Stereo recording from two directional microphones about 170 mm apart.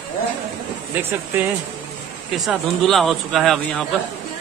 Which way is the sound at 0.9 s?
15° right (ahead or behind).